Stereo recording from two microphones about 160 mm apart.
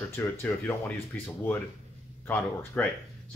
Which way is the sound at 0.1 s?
15° left (ahead or behind).